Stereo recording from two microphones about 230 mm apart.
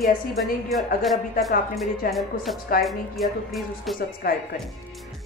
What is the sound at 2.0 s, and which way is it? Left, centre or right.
Speech, left.